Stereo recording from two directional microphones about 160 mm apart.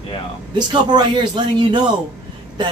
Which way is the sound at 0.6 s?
25° right (ahead or behind).